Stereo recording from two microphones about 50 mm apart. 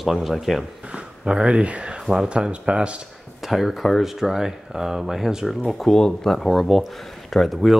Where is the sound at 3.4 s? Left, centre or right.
Centre.